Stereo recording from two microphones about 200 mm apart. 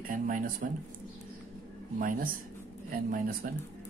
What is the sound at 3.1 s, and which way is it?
Speech, 45° right (ahead or behind).